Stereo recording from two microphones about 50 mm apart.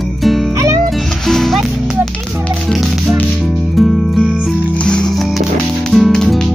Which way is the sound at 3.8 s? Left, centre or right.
Centre.